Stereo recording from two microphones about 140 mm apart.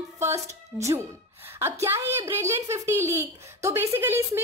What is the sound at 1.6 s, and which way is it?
A child's voice, 20° right (ahead or behind).